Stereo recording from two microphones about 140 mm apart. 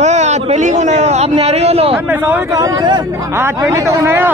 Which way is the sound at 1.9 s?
15° right (ahead or behind).